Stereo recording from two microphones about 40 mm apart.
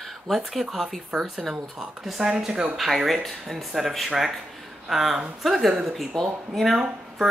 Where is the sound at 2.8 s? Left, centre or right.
Centre.